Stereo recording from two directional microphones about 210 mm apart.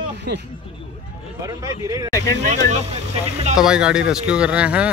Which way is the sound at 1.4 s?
15° right (ahead or behind).